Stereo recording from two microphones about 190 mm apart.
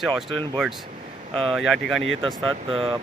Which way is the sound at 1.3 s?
30° right (ahead or behind).